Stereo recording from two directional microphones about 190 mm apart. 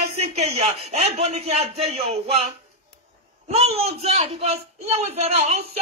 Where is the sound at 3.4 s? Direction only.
30° right (ahead or behind).